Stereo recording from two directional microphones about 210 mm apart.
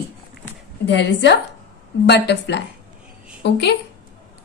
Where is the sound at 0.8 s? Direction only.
55° left (ahead or behind).